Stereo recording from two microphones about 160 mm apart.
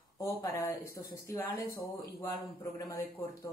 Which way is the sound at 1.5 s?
65° left (ahead or behind).